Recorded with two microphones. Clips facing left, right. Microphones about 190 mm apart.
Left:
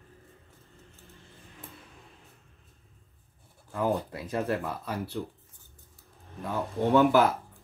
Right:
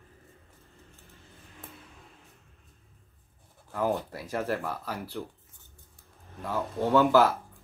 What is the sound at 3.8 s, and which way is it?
Speech, 20° left (ahead or behind).